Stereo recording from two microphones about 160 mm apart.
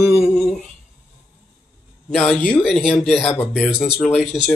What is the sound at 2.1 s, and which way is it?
Speech, 5° left (ahead or behind).